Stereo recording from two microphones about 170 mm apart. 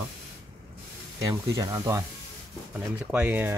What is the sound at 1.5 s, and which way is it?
Speech, 20° right (ahead or behind).